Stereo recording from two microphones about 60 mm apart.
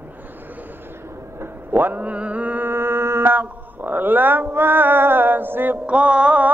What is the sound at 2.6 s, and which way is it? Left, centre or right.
Music, right.